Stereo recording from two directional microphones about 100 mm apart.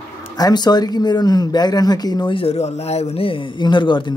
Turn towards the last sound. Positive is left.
turn(degrees=50)  # may be behind; listen again after turning